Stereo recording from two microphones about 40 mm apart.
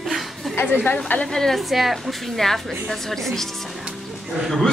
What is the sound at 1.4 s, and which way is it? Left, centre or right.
Speech, centre.